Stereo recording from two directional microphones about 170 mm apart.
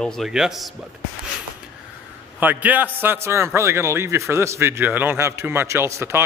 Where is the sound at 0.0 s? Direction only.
Centre (ahead or behind).